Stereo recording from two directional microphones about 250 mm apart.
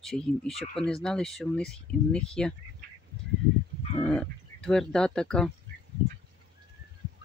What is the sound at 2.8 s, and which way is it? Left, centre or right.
Duck, right.